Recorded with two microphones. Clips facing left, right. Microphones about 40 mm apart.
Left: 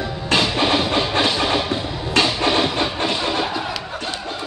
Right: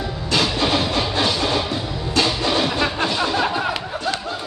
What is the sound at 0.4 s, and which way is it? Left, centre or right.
Train, left.